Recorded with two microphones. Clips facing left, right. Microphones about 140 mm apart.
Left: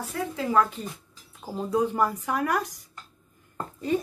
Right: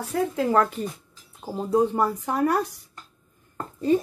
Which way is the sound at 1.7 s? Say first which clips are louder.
Right 3 dB; 35° right (ahead or behind).